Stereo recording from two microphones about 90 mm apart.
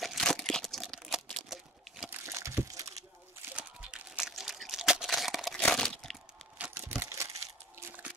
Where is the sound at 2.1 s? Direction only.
30° right (ahead or behind).